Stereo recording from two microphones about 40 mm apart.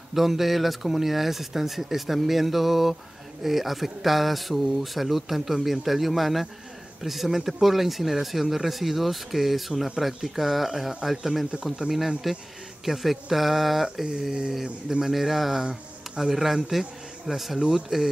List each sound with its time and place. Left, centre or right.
0.1 s speech: centre